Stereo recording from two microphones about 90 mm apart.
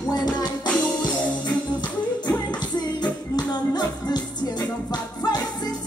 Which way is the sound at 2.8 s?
50° left (ahead or behind).